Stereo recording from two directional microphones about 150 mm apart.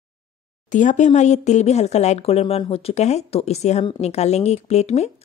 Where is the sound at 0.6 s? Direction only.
55° left (ahead or behind).